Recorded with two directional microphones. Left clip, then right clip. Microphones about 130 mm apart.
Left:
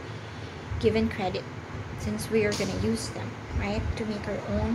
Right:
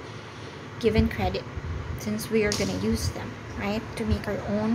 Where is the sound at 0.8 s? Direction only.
10° right (ahead or behind).